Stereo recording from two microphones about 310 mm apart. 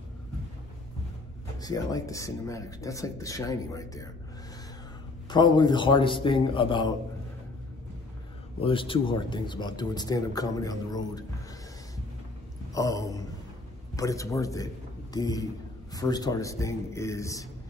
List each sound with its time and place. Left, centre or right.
1.6 s speech: centre
5.3 s speech: centre
8.5 s speech: centre
12.7 s speech: centre